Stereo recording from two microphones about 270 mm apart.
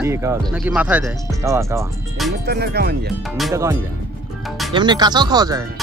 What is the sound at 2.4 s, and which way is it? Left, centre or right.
Speech, right.